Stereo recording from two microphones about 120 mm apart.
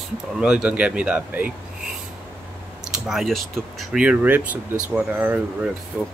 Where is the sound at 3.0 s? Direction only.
Centre (ahead or behind).